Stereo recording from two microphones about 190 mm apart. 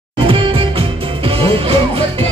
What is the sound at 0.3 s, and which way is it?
Music, 30° right (ahead or behind).